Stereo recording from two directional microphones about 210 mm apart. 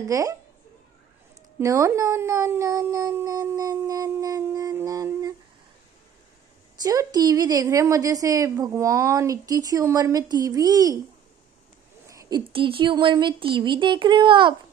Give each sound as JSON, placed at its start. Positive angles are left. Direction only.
{"t": 0.0, "sound": "a woman's voice", "side_deg": -15}
{"t": 1.6, "sound": "a woman's voice", "side_deg": -15}
{"t": 6.8, "sound": "a woman's voice", "side_deg": -15}
{"t": 12.1, "sound": "speech", "side_deg": -20}